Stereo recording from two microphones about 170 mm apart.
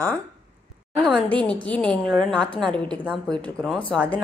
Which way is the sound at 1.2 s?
5° left (ahead or behind).